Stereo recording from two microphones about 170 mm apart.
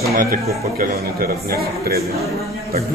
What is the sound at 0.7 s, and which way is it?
A man's voice, 60° right (ahead or behind).